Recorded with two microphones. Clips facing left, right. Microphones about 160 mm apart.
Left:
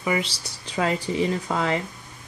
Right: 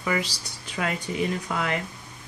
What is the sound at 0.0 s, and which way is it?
Speech, 20° left (ahead or behind).